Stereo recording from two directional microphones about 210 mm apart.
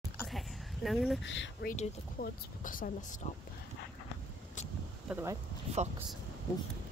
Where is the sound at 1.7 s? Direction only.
40° left (ahead or behind).